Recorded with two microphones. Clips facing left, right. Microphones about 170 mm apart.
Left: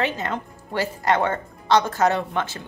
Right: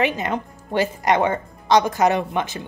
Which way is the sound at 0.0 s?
15° right (ahead or behind).